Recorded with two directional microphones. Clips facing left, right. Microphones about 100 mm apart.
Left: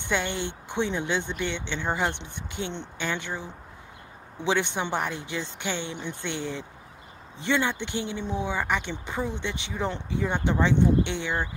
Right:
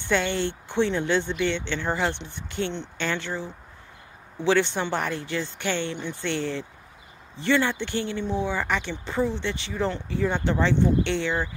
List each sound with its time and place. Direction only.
0.1 s speech: 15° left (ahead or behind)